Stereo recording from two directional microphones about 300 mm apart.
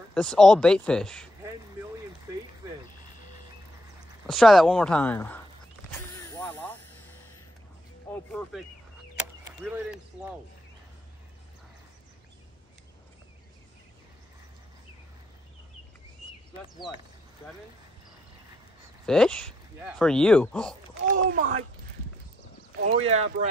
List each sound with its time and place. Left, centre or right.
0.1 s speech: centre
4.3 s speech: centre
6.1 s vehicle: centre
8.1 s speech: centre
19.0 s speech: centre
21.3 s speech: right
22.8 s speech: right